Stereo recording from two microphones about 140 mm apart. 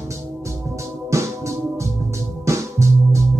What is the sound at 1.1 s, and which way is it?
Music, 20° right (ahead or behind).